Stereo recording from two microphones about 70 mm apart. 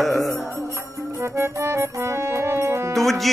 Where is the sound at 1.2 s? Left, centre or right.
Right.